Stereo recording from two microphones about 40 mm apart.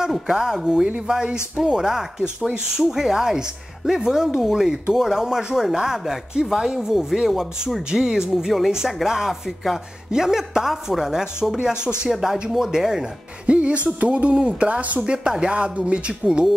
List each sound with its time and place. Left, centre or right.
0.3 s a woman's voice: centre
13.5 s speech: right
13.9 s speech: right
15.0 s a woman's voice: centre